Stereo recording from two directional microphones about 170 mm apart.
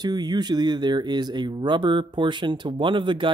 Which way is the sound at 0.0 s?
25° right (ahead or behind).